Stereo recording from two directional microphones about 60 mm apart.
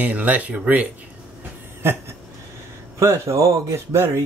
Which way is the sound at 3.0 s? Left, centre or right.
Right.